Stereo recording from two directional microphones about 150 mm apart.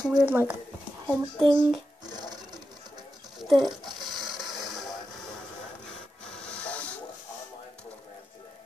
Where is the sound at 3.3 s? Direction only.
Centre (ahead or behind).